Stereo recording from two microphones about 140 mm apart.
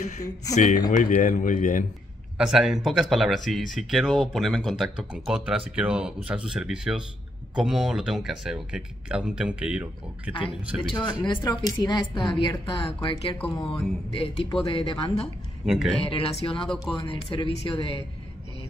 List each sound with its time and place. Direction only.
0.6 s a man's voice: 65° left (ahead or behind)
2.3 s speech: 5° right (ahead or behind)
10.3 s speech: 35° left (ahead or behind)
13.4 s speech: 5° left (ahead or behind)
14.1 s speech: 40° left (ahead or behind)
15.6 s speech: centre (ahead or behind)
16.0 s speech: 40° left (ahead or behind)
16.6 s speech: centre (ahead or behind)
17.0 s speech: 35° left (ahead or behind)